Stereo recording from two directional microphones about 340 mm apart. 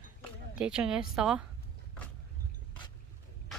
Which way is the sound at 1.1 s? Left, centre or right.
Centre.